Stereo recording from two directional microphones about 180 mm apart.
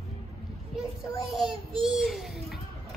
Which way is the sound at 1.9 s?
Centre (ahead or behind).